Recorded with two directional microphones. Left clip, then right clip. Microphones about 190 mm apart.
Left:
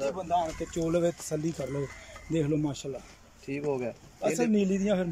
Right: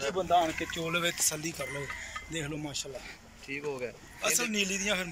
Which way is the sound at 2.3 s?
60° left (ahead or behind).